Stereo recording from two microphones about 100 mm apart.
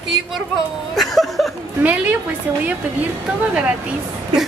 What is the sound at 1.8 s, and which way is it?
Speech, 15° right (ahead or behind).